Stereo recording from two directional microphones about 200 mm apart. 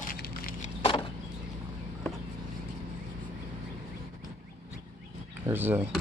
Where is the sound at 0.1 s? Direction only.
45° left (ahead or behind).